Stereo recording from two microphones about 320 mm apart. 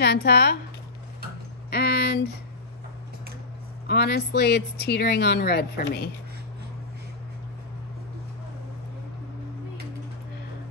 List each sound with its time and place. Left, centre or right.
0.0 s speech: left
1.7 s speech: left
3.8 s speech: left